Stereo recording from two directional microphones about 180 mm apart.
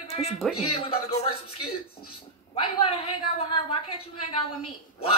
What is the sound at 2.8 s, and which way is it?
Speech, 30° left (ahead or behind).